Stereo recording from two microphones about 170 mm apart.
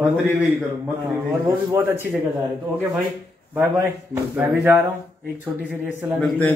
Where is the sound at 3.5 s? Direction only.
15° right (ahead or behind).